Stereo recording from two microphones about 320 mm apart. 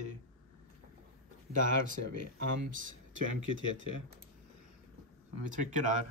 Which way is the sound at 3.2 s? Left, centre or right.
Right.